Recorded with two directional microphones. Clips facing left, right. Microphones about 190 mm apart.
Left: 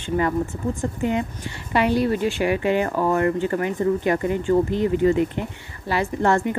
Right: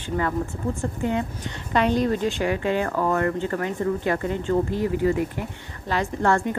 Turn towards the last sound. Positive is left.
turn(degrees=15)  # may be behind; listen again after turning